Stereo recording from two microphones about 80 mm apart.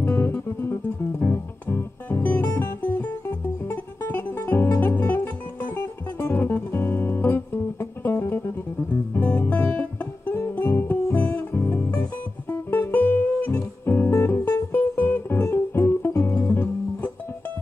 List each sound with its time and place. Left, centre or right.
0.0 s music: left